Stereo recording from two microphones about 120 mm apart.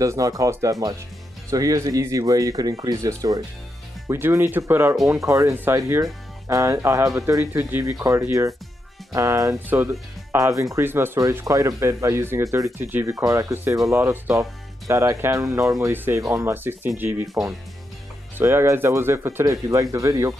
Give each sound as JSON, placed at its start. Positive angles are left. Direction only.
{"t": 0.0, "sound": "speech", "side_deg": -30}
{"t": 18.4, "sound": "speech", "side_deg": -20}